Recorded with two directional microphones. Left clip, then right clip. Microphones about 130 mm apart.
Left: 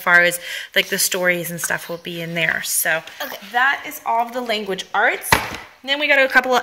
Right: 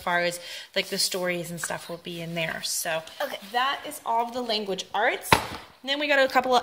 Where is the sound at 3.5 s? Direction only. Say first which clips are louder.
Left 10 dB; 15° right (ahead or behind).